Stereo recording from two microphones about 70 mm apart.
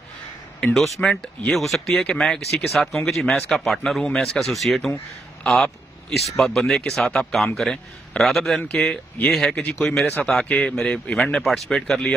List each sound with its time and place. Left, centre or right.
1.0 s a man's voice: centre
1.5 s a man's voice: centre